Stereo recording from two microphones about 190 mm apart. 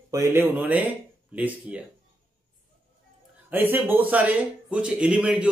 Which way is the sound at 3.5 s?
10° right (ahead or behind).